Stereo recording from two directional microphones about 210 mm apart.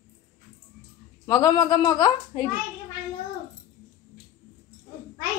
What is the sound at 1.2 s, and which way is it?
A woman's voice, 15° left (ahead or behind).